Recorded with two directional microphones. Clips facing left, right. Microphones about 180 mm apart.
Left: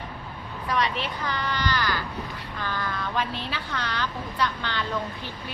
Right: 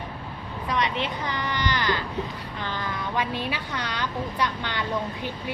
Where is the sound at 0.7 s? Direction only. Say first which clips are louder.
Even; 20° right (ahead or behind).